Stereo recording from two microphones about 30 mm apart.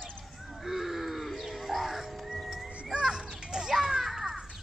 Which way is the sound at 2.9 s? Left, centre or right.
Right.